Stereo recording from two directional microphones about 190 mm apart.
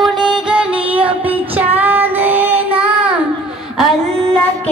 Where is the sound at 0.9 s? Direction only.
5° right (ahead or behind).